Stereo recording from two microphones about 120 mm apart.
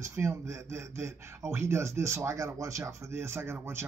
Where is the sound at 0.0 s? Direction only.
25° right (ahead or behind).